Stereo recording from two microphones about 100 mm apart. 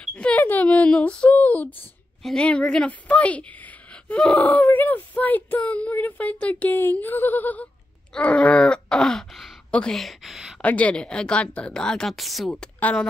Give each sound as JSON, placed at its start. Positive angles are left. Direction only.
{"t": 0.0, "sound": "a sound", "side_deg": 15}
{"t": 2.2, "sound": "a woman's voice", "side_deg": 10}
{"t": 8.1, "sound": "groan", "side_deg": 10}
{"t": 9.7, "sound": "speech", "side_deg": 10}
{"t": 10.6, "sound": "speech", "side_deg": 15}